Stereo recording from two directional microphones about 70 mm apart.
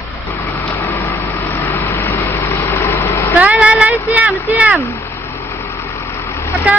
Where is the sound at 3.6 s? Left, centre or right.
Centre.